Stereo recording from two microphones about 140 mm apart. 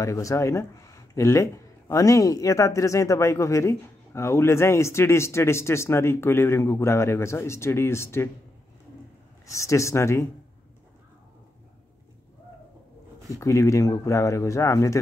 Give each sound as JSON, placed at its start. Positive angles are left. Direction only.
{"t": 0.0, "sound": "speech", "side_deg": 20}
{"t": 9.5, "sound": "speech", "side_deg": 20}
{"t": 13.3, "sound": "speech", "side_deg": 20}